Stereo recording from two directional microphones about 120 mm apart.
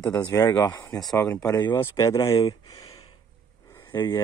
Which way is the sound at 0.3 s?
20° left (ahead or behind).